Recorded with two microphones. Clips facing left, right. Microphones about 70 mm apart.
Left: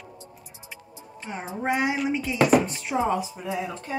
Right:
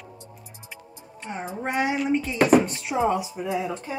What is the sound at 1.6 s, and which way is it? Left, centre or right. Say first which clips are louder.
Speech: even; centre.